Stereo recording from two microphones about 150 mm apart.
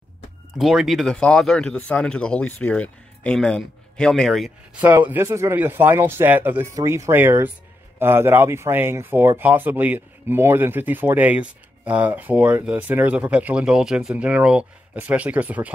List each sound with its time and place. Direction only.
0.6 s speech: centre (ahead or behind)
4.7 s speech: 10° right (ahead or behind)